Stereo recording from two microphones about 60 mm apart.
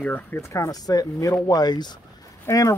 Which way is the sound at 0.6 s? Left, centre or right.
Left.